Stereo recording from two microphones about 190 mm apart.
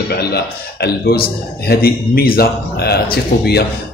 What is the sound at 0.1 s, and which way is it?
A man's voice, 55° left (ahead or behind).